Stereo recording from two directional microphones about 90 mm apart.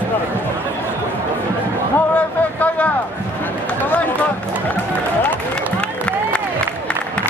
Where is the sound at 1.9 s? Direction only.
15° left (ahead or behind).